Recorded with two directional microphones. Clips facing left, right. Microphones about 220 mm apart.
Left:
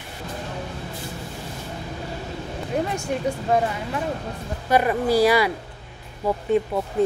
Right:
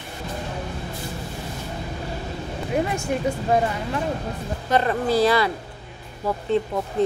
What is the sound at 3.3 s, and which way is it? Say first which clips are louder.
Speech: even; centre (ahead or behind).